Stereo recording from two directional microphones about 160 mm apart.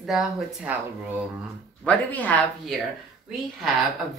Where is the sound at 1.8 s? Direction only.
10° left (ahead or behind).